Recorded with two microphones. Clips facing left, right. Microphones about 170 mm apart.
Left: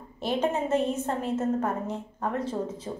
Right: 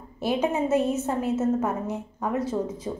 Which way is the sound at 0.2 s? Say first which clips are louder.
Right 2 dB; 10° right (ahead or behind).